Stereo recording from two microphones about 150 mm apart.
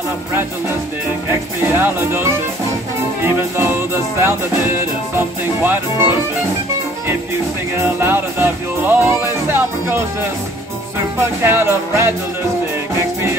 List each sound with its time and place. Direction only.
1.6 s music: 15° right (ahead or behind)
7.7 s music: 15° right (ahead or behind)
11.1 s music: 15° right (ahead or behind)